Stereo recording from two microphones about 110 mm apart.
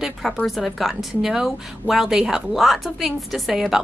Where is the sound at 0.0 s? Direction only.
Centre (ahead or behind).